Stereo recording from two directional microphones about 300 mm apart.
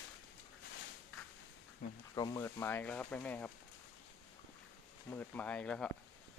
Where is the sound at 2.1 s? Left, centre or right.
Centre.